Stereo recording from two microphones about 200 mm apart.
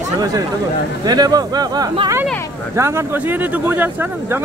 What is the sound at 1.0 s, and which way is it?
Speech, 20° right (ahead or behind).